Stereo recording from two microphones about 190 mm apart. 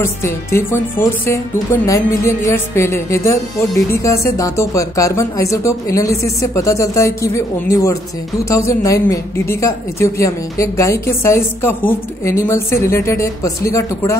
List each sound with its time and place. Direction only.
0.0 s speech: 15° left (ahead or behind)